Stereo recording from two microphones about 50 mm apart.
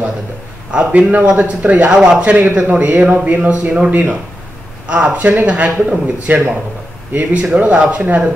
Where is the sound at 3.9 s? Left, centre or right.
Right.